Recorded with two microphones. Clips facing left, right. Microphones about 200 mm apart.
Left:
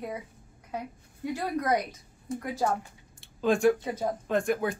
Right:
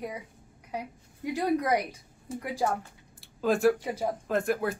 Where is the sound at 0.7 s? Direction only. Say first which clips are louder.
Even; 15° right (ahead or behind).